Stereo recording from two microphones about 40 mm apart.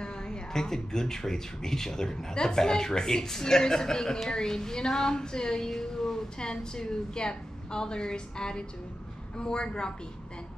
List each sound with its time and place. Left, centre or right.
0.0 s a woman's voice: centre